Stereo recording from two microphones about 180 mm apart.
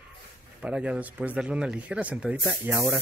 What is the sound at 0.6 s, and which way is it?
Speech, 5° right (ahead or behind).